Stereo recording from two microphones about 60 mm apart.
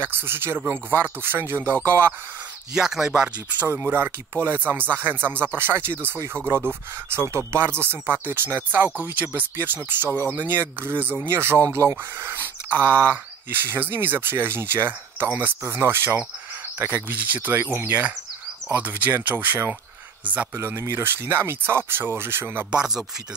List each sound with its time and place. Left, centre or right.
0.0 s speech: right
2.7 s speech: centre
3.6 s speech: right
11.6 s speech: right
20.5 s speech: right